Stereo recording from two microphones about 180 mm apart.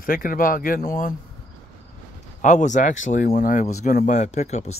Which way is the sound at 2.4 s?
45° left (ahead or behind).